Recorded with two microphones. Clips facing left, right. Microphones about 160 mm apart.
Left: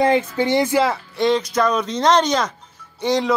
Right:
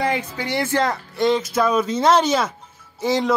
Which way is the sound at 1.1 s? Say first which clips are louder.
Right 1 dB; centre (ahead or behind).